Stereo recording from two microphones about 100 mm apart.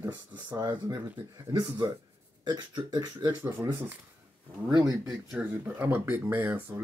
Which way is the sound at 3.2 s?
25° right (ahead or behind).